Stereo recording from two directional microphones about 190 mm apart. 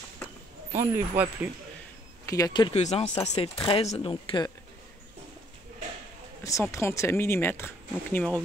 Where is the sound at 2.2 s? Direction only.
20° left (ahead or behind).